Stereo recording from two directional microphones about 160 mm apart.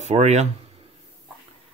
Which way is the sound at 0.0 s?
45° right (ahead or behind).